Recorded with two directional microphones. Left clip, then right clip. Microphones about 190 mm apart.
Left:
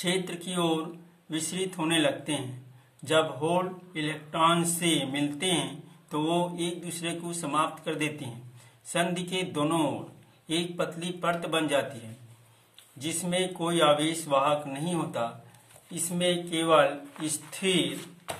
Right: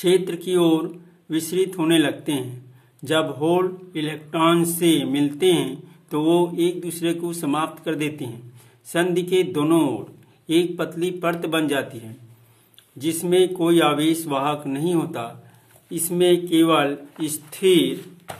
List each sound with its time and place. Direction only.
0.0 s speech: 45° right (ahead or behind)
13.0 s speech: 50° right (ahead or behind)